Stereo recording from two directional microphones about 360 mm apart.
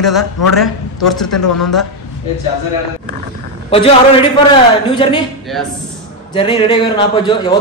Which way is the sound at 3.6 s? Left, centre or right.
Centre.